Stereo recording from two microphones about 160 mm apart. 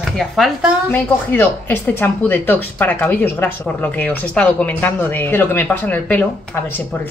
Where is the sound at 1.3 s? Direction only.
15° left (ahead or behind).